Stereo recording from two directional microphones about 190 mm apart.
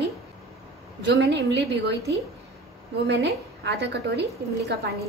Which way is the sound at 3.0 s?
60° right (ahead or behind).